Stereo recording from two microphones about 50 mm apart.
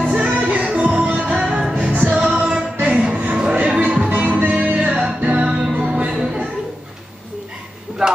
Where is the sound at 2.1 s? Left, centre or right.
Centre.